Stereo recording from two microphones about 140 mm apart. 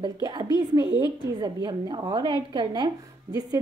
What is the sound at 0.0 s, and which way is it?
A woman's voice, 30° right (ahead or behind).